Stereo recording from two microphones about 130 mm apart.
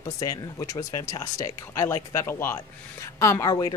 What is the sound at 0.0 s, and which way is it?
A woman's voice, 25° left (ahead or behind).